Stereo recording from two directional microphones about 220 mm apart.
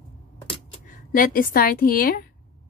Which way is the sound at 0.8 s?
40° left (ahead or behind).